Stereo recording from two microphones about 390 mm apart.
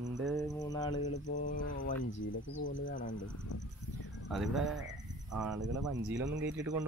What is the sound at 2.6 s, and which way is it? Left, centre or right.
Speech, left.